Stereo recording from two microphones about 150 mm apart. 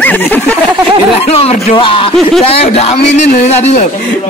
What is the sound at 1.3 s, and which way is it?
A man's voice, 40° left (ahead or behind).